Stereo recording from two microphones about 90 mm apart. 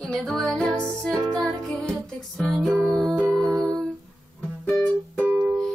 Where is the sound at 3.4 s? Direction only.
40° right (ahead or behind).